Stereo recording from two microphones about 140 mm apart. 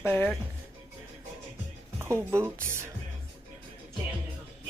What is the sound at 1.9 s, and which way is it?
Speech, 20° right (ahead or behind).